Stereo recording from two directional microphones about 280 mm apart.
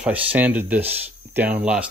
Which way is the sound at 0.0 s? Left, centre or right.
Centre.